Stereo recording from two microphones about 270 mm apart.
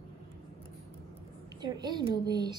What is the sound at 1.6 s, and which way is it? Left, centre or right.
Speech, centre.